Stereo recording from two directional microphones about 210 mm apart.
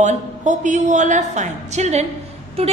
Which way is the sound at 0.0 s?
35° right (ahead or behind).